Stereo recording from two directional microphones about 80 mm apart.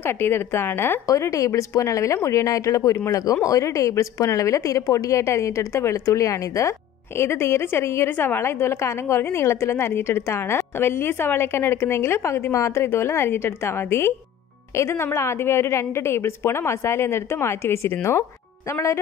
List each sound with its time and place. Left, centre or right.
0.0 s a woman's voice: left
1.0 s a woman's voice: left